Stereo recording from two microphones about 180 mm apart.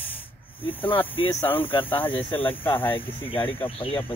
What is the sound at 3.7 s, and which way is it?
Speech, 30° left (ahead or behind).